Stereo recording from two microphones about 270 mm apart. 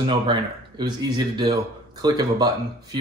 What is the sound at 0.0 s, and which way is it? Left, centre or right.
Speech, centre.